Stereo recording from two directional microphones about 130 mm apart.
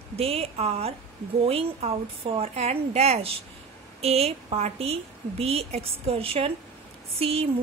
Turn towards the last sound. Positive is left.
turn(degrees=-50)  # may be behind; listen again after turning